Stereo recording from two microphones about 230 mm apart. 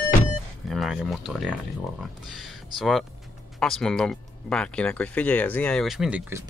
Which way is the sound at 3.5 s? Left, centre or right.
Centre.